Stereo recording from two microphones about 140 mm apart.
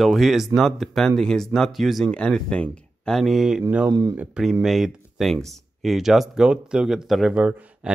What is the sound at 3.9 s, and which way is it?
Speech, 30° right (ahead or behind).